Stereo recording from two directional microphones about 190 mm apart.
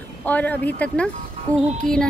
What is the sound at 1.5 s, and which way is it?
Speech, 15° right (ahead or behind).